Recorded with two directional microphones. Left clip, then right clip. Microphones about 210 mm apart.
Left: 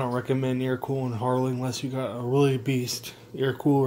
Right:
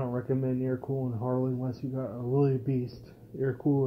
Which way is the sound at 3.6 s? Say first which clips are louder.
Left 6 dB; 40° left (ahead or behind).